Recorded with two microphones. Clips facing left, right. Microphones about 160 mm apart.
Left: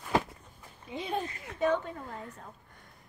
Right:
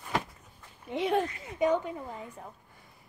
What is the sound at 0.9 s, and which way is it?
Speech, 90° right.